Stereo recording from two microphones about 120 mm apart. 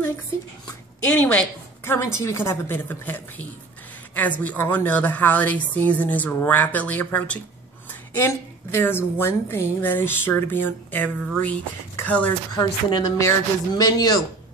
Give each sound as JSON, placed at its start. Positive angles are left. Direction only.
{"t": 1.0, "sound": "a woman's voice", "side_deg": 15}
{"t": 2.0, "sound": "a woman's voice", "side_deg": 25}
{"t": 12.5, "sound": "a woman's voice", "side_deg": 30}